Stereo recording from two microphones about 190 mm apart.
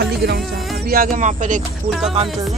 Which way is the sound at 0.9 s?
45° right (ahead or behind).